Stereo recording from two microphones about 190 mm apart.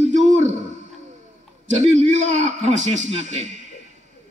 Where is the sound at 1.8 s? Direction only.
40° right (ahead or behind).